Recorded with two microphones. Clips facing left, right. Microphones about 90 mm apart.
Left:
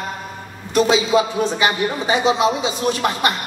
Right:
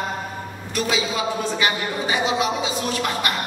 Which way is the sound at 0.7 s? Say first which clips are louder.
Left 9 dB; 25° left (ahead or behind).